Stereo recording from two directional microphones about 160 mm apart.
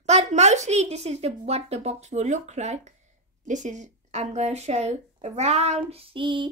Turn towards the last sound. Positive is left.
turn(degrees=-30)  # may be behind; listen again after turning